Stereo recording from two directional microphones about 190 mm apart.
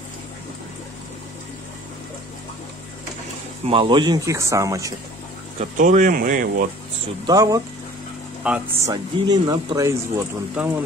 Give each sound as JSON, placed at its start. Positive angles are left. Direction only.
{"t": 3.6, "sound": "speech", "side_deg": -30}
{"t": 5.6, "sound": "speech", "side_deg": -40}
{"t": 7.2, "sound": "speech", "side_deg": -20}
{"t": 8.5, "sound": "speech", "side_deg": -5}
{"t": 8.8, "sound": "speech", "side_deg": -20}
{"t": 10.6, "sound": "speech", "side_deg": -5}